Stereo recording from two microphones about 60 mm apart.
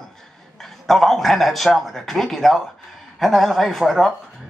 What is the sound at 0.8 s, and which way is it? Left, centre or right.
A man's voice, centre.